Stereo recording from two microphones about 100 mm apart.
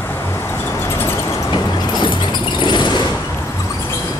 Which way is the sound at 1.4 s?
50° left (ahead or behind).